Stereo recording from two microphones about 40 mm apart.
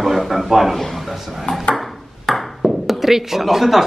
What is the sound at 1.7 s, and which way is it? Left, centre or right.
Ping, centre.